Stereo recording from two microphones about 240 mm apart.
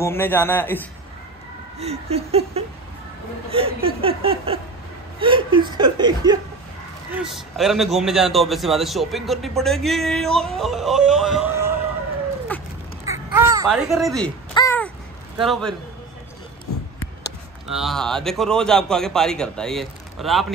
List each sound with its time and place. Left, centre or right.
0.0 s a man's voice: centre
1.8 s speech: right
7.1 s a man's voice: centre
12.5 s crow: centre
13.1 s a sound: centre
13.7 s a man's voice: centre
14.5 s a sound: centre
15.3 s a man's voice: centre
17.6 s a man's voice: centre